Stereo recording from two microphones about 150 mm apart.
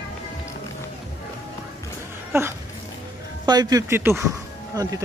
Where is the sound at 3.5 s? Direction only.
25° right (ahead or behind).